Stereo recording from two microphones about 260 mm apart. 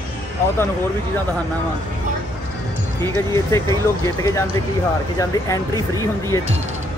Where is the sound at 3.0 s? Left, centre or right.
Centre.